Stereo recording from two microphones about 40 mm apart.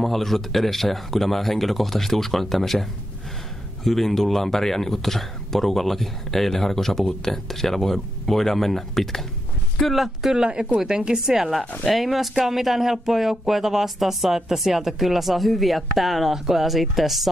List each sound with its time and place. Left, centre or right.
0.0 s speech: centre
10.3 s speech: centre
11.8 s speech: centre